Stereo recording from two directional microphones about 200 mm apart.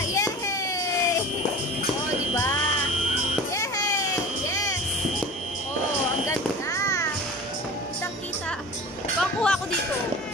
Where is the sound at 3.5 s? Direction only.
15° left (ahead or behind).